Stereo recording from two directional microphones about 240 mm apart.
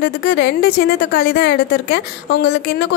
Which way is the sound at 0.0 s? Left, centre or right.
Left.